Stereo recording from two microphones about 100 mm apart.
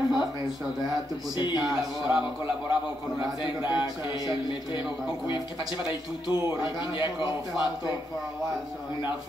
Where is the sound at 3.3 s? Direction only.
50° left (ahead or behind).